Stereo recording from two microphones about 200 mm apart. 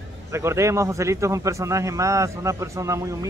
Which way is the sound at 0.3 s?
15° right (ahead or behind).